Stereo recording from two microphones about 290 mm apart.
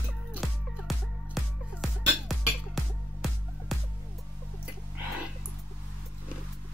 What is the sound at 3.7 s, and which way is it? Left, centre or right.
Music, centre.